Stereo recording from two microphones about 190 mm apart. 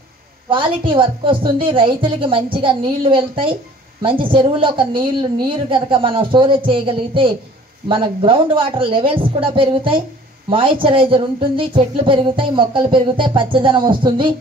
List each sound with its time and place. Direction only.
0.5 s speech: 25° right (ahead or behind)